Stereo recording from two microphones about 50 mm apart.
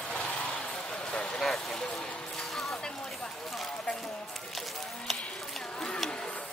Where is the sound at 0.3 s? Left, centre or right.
Left.